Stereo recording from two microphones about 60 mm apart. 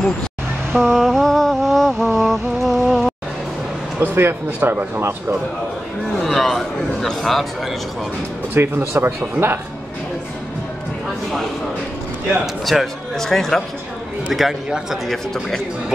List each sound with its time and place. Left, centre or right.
0.7 s a man's voice: centre
2.1 s a sound: centre
4.0 s speech: right
6.1 s a man's voice: centre
8.5 s speech: right
12.6 s a man's voice: centre